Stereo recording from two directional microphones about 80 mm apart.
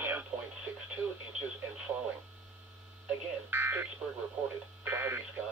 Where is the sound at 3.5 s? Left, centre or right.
Right.